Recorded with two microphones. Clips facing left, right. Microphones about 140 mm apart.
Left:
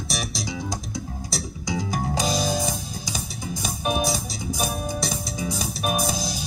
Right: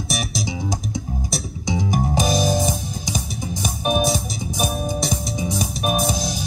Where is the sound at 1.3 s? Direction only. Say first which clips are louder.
Right 2 dB; 20° right (ahead or behind).